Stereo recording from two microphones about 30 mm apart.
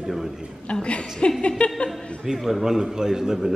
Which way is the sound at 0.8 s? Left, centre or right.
Left.